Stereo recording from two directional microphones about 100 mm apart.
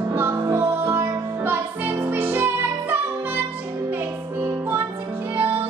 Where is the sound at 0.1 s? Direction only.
20° right (ahead or behind).